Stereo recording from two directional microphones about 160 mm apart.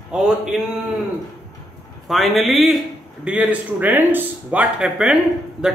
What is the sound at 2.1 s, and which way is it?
A man's voice, centre (ahead or behind).